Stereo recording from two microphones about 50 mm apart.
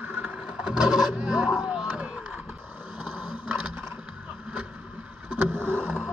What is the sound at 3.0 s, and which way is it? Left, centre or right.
Vehicle, right.